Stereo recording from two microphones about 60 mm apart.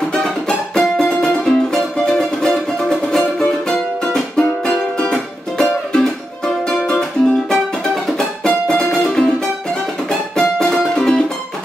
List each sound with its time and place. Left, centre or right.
0.2 s music: centre
10.6 s music: centre